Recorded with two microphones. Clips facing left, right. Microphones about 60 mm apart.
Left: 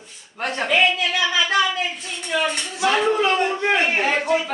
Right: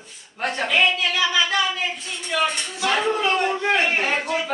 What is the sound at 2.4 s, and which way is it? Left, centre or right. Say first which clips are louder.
A man's voice: left 1 dB; centre.